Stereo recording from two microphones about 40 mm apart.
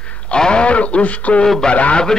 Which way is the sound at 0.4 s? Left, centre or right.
Left.